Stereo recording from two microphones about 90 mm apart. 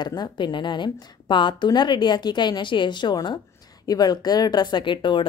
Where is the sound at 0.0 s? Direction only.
55° left (ahead or behind).